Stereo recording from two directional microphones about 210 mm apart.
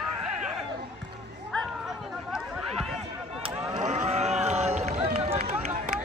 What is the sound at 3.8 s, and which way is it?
Run, 35° right (ahead or behind).